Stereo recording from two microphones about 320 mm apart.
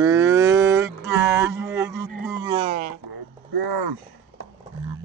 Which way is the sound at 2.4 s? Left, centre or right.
Centre.